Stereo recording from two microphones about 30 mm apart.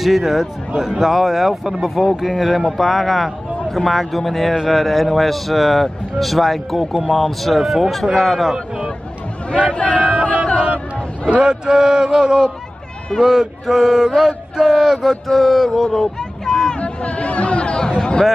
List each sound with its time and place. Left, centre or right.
0.0 s speech: centre
9.9 s a sound: right
11.4 s a sound: right
13.2 s speech: centre
15.2 s speech: centre
16.7 s chatter: left